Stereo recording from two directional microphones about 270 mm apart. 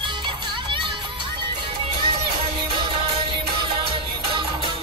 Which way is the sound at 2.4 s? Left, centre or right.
Centre.